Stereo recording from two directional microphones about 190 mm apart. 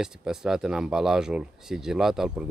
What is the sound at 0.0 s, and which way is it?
Speech, 5° right (ahead or behind).